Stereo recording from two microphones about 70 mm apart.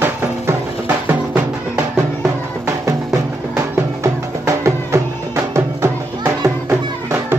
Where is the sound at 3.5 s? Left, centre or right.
Right.